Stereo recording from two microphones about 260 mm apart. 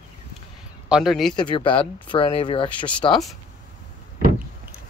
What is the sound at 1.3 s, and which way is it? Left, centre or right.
Speech, centre.